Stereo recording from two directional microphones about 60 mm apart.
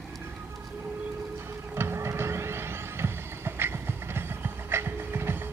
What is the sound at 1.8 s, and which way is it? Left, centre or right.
Music, right.